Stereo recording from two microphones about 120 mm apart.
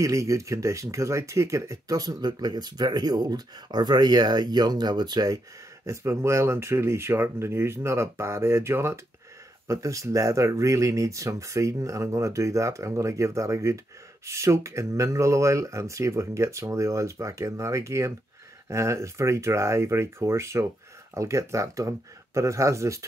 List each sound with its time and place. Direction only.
0.0 s speech: 25° right (ahead or behind)
5.9 s speech: 25° right (ahead or behind)